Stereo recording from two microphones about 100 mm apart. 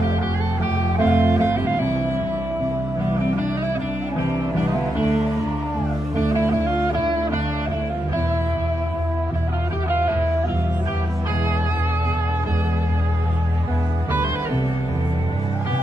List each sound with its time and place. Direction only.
1.0 s music: 30° right (ahead or behind)
6.1 s music: 30° right (ahead or behind)
9.8 s music: 20° right (ahead or behind)